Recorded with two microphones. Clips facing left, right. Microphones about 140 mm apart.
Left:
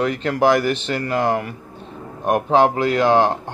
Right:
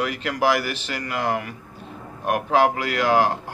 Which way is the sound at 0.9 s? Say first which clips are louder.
Left 3 dB; 30° left (ahead or behind).